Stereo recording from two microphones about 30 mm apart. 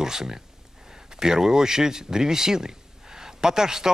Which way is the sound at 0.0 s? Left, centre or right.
Centre.